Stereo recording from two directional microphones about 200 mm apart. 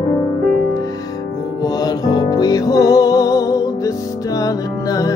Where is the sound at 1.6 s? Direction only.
20° left (ahead or behind).